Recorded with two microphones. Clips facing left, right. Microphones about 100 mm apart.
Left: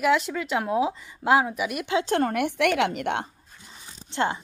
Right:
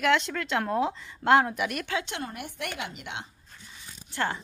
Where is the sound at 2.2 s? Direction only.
75° left (ahead or behind); by 3.3 s 55° left (ahead or behind).